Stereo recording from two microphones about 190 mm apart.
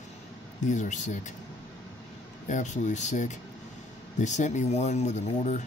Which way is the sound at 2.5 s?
40° left (ahead or behind).